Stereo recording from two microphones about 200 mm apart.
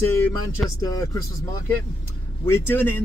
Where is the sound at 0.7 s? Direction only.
15° left (ahead or behind).